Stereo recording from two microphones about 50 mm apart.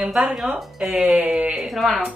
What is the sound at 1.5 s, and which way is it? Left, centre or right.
Speech, centre.